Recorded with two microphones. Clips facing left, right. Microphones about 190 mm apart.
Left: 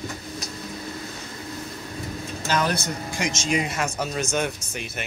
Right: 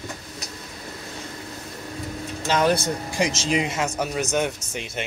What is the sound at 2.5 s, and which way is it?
Speech, 25° right (ahead or behind).